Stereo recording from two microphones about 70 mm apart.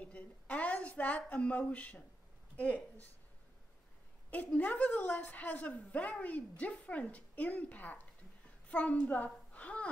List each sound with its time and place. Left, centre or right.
0.0 s a woman's voice: left
4.3 s a woman's voice: left